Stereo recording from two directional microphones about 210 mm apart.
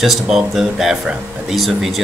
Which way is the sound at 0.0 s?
Centre (ahead or behind).